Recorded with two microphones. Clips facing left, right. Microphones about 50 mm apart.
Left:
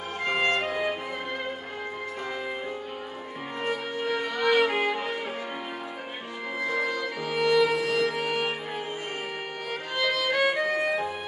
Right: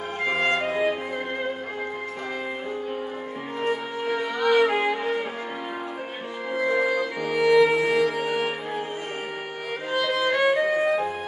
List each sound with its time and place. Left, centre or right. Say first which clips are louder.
0.2 s music: right 2 dB; centre
0.7 s music: right 4 dB; centre
3.6 s music: right 3 dB; centre
4.4 s music: right 3 dB; centre
4.7 s music: right 3 dB; centre
6.6 s music: right 6 dB; centre
9.9 s music: right 3 dB; centre